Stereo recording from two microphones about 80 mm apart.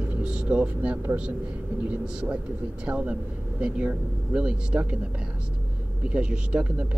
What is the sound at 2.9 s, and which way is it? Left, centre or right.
Speech, centre.